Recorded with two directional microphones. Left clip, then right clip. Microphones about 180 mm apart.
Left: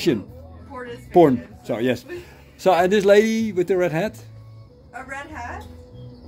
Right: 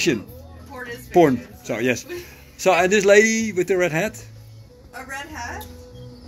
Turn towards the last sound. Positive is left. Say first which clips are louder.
# right 1 dB
turn(degrees=0)  # may be behind; listen again after turning